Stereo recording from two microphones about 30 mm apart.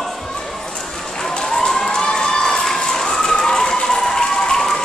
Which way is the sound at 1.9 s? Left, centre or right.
Left.